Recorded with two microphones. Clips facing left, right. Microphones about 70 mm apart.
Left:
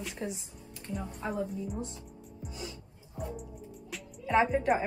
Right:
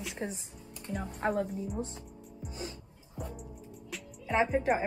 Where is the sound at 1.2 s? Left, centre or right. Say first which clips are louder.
Right 4 dB; right.